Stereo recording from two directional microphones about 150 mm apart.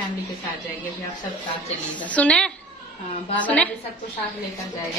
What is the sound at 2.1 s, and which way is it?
A woman's voice, 5° left (ahead or behind).